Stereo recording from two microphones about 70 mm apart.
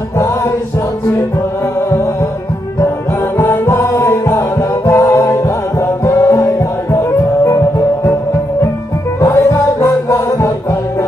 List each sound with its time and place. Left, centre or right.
3.3 s music: left
9.2 s music: left